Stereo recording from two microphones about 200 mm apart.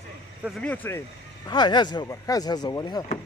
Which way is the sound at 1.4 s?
20° left (ahead or behind).